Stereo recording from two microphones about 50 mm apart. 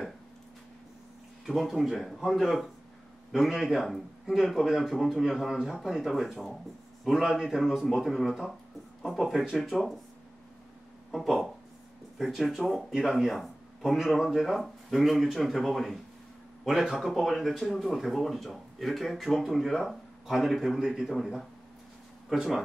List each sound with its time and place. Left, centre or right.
1.4 s speech: centre
11.2 s speech: centre